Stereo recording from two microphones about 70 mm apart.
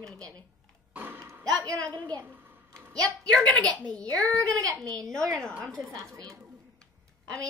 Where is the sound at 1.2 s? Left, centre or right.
Right.